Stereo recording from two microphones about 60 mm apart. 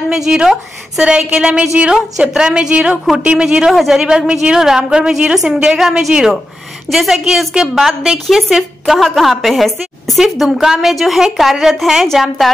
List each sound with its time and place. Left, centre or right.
0.1 s a woman's voice: centre